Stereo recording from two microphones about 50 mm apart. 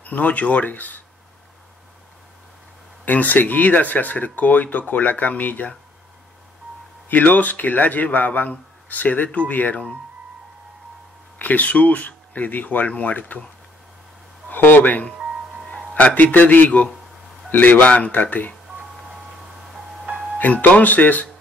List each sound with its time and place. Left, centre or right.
0.0 s speech: left
3.1 s speech: left
7.1 s speech: left
11.3 s speech: left
14.5 s speech: left
15.7 s a man's voice: left
20.3 s speech: left